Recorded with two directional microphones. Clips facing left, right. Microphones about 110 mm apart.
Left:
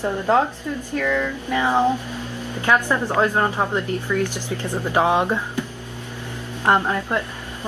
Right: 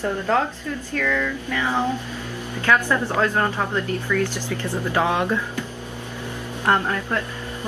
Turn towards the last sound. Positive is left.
turn(degrees=15)  # may be behind; listen again after turning